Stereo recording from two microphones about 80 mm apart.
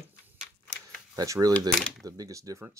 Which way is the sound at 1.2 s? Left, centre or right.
Right.